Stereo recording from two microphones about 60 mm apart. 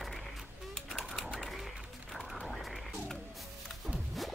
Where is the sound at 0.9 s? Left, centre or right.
Centre.